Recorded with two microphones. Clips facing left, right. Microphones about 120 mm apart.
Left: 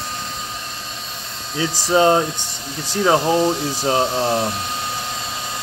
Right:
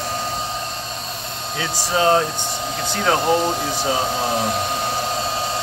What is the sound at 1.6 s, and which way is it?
Speech, 30° left (ahead or behind).